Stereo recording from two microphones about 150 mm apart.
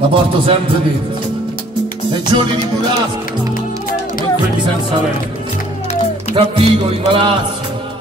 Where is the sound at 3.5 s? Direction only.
70° left (ahead or behind).